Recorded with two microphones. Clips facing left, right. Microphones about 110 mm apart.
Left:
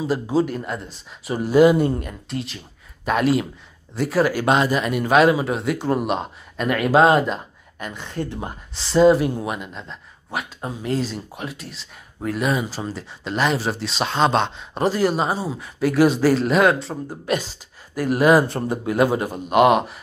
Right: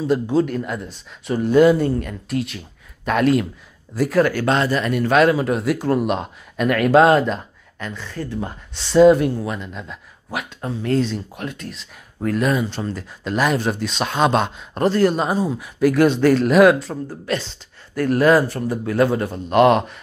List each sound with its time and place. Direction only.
0.0 s speech: centre (ahead or behind)
2.2 s speech: centre (ahead or behind)
7.8 s speech: 20° left (ahead or behind)
8.7 s speech: centre (ahead or behind)
9.3 s speech: 15° left (ahead or behind)
9.7 s speech: centre (ahead or behind)
17.1 s speech: 15° left (ahead or behind)